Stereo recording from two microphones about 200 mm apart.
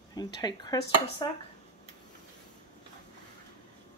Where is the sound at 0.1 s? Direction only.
20° left (ahead or behind).